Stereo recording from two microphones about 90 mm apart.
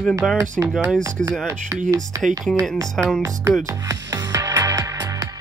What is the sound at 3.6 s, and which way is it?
Music, 40° right (ahead or behind).